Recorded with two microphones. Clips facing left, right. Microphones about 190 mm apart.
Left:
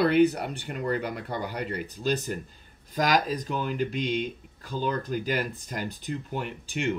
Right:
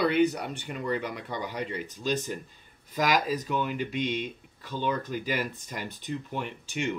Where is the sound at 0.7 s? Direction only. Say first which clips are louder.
Left 2 dB; 50° left (ahead or behind).